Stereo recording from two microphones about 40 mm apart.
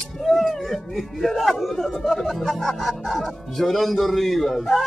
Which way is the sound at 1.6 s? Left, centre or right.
Centre.